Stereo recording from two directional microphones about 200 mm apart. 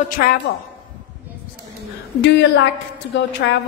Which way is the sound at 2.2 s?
60° left (ahead or behind).